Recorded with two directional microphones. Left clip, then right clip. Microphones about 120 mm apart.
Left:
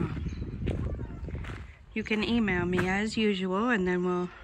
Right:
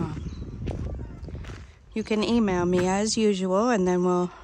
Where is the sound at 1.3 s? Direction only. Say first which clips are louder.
Even; 25° right (ahead or behind).